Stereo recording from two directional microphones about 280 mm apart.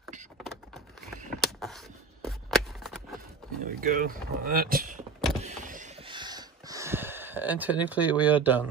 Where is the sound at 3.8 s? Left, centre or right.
Right.